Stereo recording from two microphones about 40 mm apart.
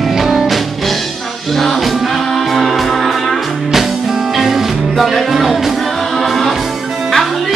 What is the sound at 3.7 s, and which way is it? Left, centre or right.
Music, centre.